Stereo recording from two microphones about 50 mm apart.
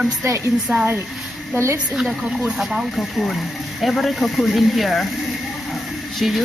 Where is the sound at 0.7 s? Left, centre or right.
Centre.